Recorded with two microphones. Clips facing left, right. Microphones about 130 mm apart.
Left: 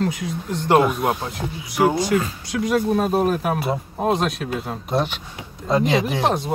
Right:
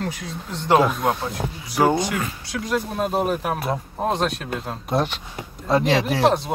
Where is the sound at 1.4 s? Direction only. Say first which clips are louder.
Even; 35° right (ahead or behind).